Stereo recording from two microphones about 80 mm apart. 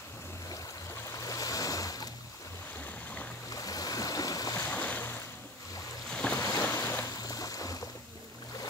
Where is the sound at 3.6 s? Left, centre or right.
Left.